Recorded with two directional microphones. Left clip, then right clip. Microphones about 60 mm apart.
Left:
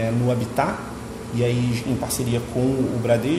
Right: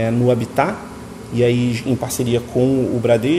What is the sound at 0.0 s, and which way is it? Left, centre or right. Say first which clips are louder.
A man's voice: right 6 dB; right.